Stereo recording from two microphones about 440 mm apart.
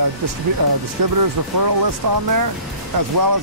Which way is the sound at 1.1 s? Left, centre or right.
Right.